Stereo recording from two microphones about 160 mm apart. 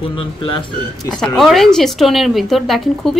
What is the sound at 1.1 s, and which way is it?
Speech, centre (ahead or behind).